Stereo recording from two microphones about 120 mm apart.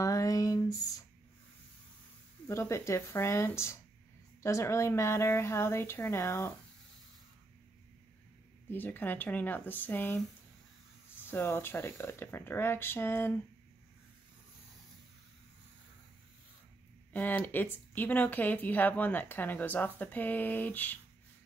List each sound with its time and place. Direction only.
0.0 s a sound: 30° left (ahead or behind)
2.4 s speech: 25° left (ahead or behind)
8.6 s speech: 15° left (ahead or behind)
17.1 s speech: 15° left (ahead or behind)